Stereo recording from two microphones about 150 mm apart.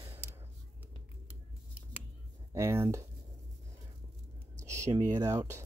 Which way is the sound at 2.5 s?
20° right (ahead or behind).